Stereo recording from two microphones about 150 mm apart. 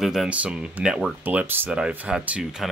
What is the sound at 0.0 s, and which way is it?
Speech, centre (ahead or behind).